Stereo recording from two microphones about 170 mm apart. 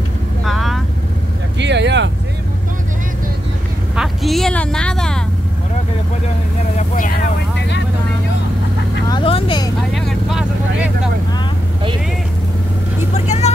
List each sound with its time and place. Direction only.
0.5 s vehicle: centre (ahead or behind)
1.6 s vehicle: 90° right
3.9 s vehicle: centre (ahead or behind)
9.1 s vehicle: 30° left (ahead or behind)
9.8 s vehicle: centre (ahead or behind)
13.1 s vehicle: 40° left (ahead or behind)